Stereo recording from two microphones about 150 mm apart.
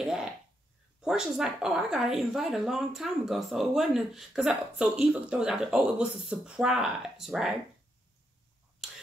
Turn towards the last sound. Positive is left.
turn(degrees=-5)  # may be behind; listen again after turning